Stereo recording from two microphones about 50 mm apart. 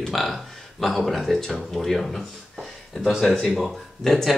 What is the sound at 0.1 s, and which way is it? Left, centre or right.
Speech, centre.